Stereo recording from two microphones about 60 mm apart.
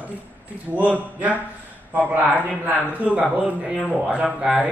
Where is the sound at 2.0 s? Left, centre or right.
Right.